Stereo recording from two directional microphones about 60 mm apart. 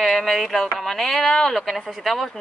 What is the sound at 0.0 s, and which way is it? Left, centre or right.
Speech, centre.